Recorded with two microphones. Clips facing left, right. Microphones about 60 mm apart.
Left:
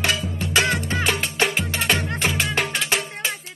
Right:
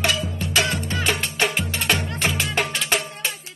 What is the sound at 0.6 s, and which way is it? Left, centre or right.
Music, left.